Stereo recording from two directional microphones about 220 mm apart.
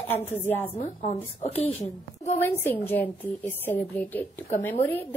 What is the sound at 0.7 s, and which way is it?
Speech, 25° left (ahead or behind).